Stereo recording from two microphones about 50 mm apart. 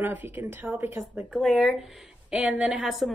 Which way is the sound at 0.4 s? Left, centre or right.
Right.